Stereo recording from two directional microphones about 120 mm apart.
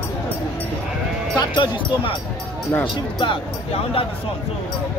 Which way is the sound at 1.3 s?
40° left (ahead or behind).